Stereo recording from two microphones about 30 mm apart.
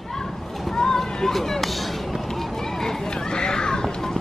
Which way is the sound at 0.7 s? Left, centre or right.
Centre.